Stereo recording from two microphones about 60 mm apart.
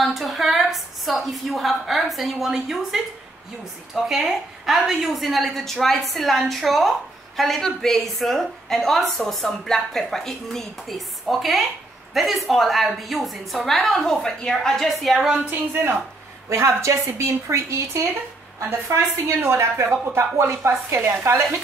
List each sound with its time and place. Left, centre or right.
0.0 s a woman's voice: centre
16.4 s a woman's voice: right